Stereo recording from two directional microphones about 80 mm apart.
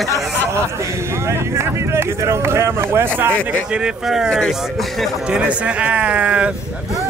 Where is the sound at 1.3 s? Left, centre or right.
Right.